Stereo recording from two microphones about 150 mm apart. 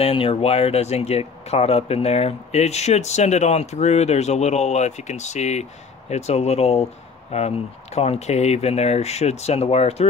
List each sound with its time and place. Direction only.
0.0 s speech: 40° left (ahead or behind)